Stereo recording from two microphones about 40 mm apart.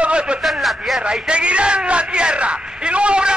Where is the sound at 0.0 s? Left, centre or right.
Right.